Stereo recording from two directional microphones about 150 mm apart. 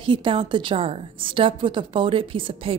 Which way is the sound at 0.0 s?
35° right (ahead or behind).